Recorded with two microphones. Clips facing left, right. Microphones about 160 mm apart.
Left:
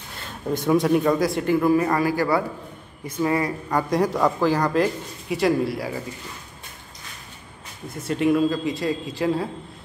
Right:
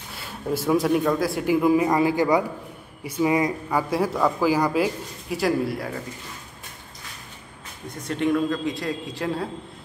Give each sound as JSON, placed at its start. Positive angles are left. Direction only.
{"t": 0.2, "sound": "speech", "side_deg": -5}
{"t": 1.5, "sound": "a man's voice", "side_deg": -15}
{"t": 3.7, "sound": "a man's voice", "side_deg": -5}
{"t": 8.0, "sound": "a man's voice", "side_deg": 5}